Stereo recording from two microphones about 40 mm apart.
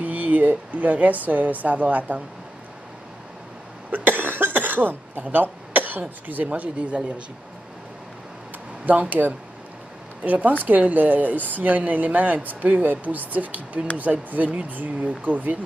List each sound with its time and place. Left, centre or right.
0.0 s speech: right
3.9 s cough: right
5.3 s speech: right
8.9 s speech: right
10.2 s speech: right